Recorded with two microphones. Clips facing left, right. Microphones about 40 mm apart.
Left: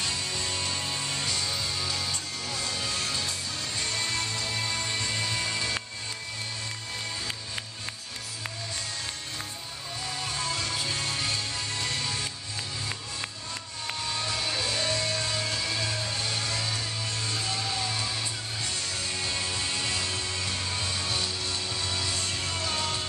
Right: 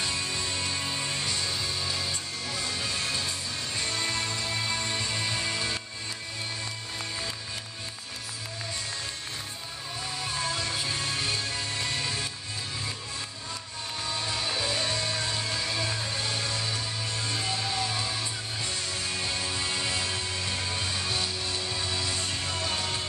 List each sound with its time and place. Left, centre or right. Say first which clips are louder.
0.0 s music: right 1 dB; centre
10.2 s music: right 1 dB; centre
14.3 s music: right 1 dB; centre
15.3 s music: even; centre
19.1 s music: even; centre